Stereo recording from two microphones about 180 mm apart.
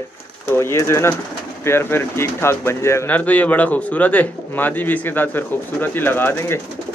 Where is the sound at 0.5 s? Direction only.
15° left (ahead or behind).